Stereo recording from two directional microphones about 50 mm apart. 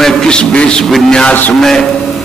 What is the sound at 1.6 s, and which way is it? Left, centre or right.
Speech, centre.